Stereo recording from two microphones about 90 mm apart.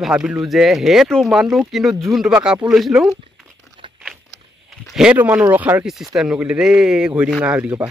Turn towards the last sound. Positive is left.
turn(degrees=-10)  # may be behind; listen again after turning